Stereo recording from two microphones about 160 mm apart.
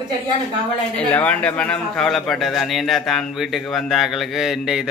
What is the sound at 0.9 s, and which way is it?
A man's voice, 10° left (ahead or behind).